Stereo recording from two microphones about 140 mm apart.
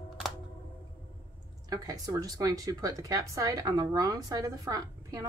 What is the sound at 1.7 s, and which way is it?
Speech, 25° right (ahead or behind).